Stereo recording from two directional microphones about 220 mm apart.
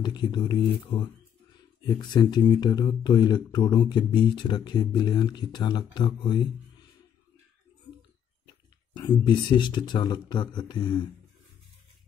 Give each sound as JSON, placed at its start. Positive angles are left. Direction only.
{"t": 0.0, "sound": "speech", "side_deg": 20}
{"t": 8.9, "sound": "speech", "side_deg": 20}